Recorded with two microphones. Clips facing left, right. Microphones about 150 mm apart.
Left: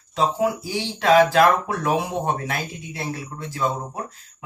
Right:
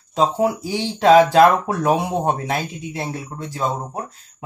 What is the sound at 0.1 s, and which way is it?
Speech, 40° right (ahead or behind).